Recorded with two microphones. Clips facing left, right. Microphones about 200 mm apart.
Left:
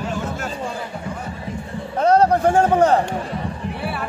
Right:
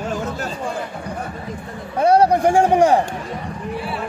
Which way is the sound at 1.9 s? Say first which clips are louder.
Right 1 dB; 10° right (ahead or behind).